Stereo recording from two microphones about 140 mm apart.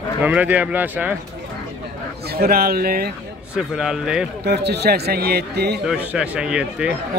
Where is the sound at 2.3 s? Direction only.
90° right.